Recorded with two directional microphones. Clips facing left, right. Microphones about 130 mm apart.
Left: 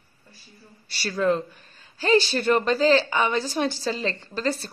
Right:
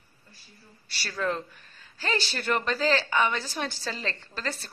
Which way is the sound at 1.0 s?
20° left (ahead or behind).